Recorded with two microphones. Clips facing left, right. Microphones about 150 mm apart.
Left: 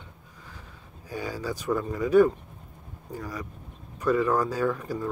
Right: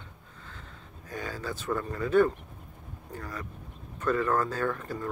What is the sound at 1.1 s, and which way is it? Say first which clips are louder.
Speech: left 4 dB; 10° left (ahead or behind).